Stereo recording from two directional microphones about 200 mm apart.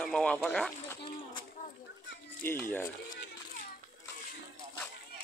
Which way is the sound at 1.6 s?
40° left (ahead or behind).